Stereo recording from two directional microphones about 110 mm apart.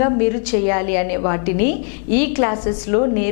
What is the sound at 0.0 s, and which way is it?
A woman's voice, 15° left (ahead or behind).